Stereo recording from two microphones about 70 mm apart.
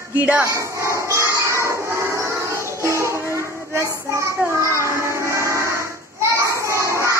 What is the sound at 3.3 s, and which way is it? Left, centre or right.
Child singing, right.